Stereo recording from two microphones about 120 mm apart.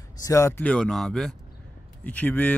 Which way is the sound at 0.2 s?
25° left (ahead or behind).